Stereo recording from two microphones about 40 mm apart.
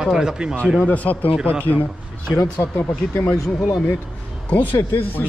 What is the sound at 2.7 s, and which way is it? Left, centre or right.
Speech, left.